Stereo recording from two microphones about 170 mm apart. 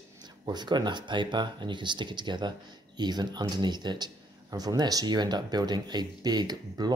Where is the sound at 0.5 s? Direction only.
25° right (ahead or behind).